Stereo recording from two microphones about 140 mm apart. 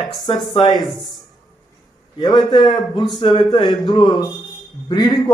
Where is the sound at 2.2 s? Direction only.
30° left (ahead or behind).